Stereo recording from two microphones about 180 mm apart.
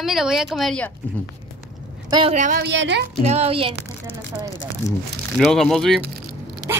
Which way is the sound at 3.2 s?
35° right (ahead or behind).